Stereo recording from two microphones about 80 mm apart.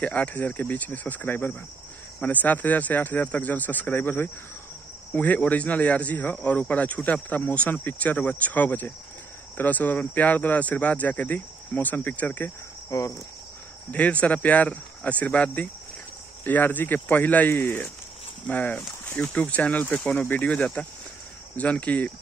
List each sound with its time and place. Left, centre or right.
0.0 s speech: centre
12.9 s cricket: left
13.9 s speech: centre